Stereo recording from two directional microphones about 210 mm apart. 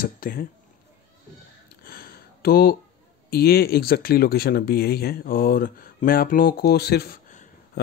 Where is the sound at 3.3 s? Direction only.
50° left (ahead or behind).